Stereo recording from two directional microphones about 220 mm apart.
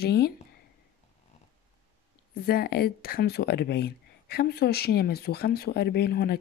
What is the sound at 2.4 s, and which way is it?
Speech, 45° left (ahead or behind).